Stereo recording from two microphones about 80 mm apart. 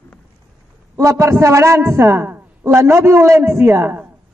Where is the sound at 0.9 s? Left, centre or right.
Right.